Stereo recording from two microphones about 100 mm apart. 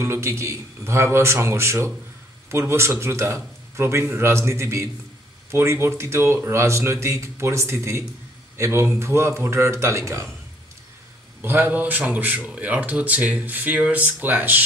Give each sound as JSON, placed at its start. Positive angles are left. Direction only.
{"t": 0.0, "sound": "speech", "side_deg": -25}
{"t": 11.4, "sound": "speech", "side_deg": -20}